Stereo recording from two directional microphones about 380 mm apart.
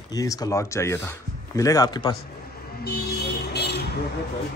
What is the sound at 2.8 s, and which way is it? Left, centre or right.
Music, left.